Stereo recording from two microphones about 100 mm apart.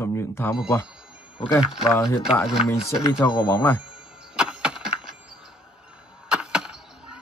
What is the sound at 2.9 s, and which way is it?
Speech, 30° left (ahead or behind).